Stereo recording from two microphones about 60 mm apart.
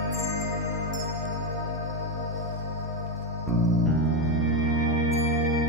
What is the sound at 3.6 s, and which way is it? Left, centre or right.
Music, centre.